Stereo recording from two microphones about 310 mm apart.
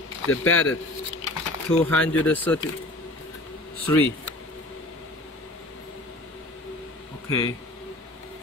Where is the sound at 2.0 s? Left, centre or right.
Centre.